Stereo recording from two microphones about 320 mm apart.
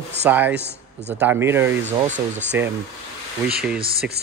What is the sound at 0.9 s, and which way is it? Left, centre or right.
Speech, right.